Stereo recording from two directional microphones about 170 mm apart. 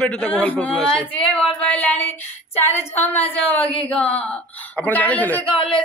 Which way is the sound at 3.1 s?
10° left (ahead or behind).